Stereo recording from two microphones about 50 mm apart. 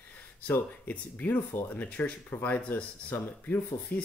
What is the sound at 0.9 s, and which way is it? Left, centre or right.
Speech, left.